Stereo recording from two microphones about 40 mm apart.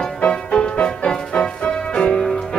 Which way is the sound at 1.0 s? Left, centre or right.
Centre.